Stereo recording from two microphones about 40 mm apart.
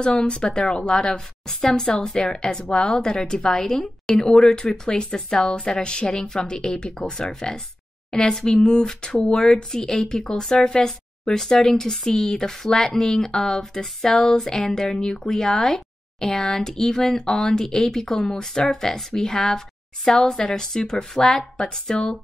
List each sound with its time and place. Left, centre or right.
0.0 s speech: centre
4.0 s a sound: centre
4.3 s speech: centre
4.6 s speech: centre